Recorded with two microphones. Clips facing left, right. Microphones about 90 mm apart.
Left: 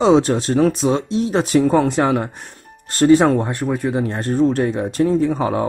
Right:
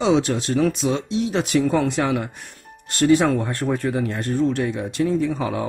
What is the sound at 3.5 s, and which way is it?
Speech, 15° left (ahead or behind).